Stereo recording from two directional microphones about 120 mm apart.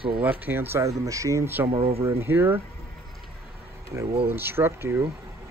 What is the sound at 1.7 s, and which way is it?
Speech, 50° right (ahead or behind).